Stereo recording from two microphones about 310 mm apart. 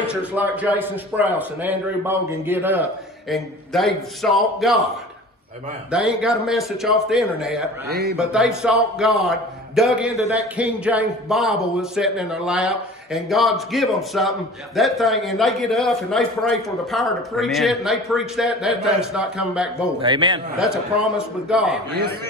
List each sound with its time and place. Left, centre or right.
0.3 s a man's voice: centre
5.9 s a man's voice: centre
7.9 s a man's voice: right
8.2 s a man's voice: centre
20.0 s a man's voice: centre
20.5 s a man's voice: centre
21.9 s a man's voice: right